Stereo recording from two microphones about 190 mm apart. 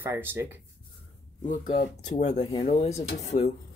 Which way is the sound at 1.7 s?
40° left (ahead or behind).